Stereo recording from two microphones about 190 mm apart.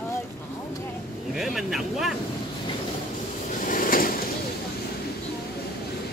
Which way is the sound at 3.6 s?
45° left (ahead or behind).